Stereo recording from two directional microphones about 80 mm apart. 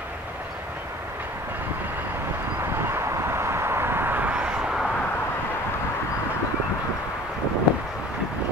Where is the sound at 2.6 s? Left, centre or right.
Right; by 4.9 s centre.